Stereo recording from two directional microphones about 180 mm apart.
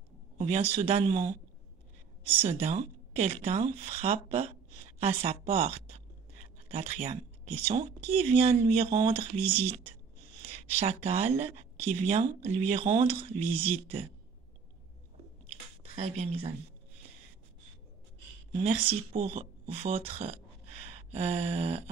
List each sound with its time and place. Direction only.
0.4 s a sound: 35° right (ahead or behind)
0.7 s speech: 35° right (ahead or behind)
2.4 s speech: 35° right (ahead or behind)
15.8 s speech: 35° right (ahead or behind)
18.6 s speech: 30° right (ahead or behind)